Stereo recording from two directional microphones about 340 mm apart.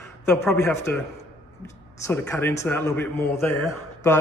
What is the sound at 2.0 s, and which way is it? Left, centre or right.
A man's voice, centre.